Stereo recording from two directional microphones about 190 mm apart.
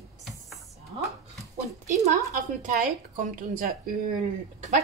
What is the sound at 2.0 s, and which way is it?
A woman's voice, 40° right (ahead or behind).